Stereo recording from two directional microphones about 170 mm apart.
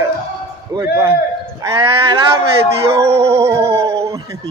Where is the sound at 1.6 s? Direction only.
15° right (ahead or behind).